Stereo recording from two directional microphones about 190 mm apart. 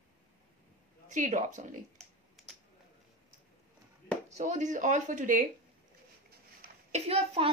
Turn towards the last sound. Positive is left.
turn(degrees=-30)  # may be behind; listen again after turning